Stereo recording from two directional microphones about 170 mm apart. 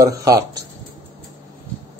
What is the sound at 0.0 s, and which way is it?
Speech, 20° right (ahead or behind).